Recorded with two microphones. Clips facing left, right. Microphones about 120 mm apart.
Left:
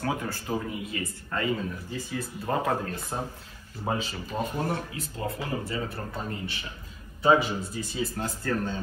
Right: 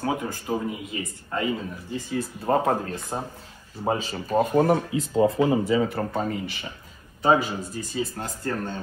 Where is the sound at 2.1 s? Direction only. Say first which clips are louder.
Right 6 dB; 30° right (ahead or behind).